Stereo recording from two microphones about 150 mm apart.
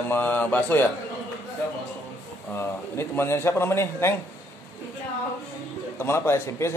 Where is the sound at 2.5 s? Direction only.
15° left (ahead or behind).